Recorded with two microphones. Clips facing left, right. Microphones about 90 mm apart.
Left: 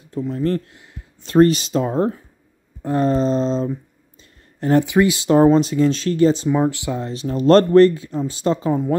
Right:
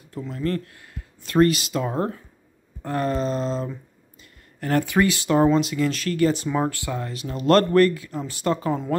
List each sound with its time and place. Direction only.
0.1 s speech: 25° left (ahead or behind)
5.3 s speech: 35° left (ahead or behind)
6.5 s speech: 15° left (ahead or behind)